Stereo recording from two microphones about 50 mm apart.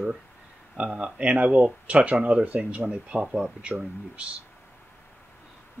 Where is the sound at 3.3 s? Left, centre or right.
Centre.